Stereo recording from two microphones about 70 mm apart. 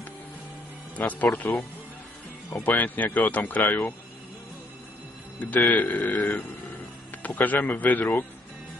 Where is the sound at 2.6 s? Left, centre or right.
Left.